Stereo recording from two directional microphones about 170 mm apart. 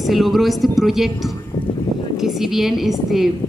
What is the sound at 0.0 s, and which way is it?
A woman's voice, centre (ahead or behind).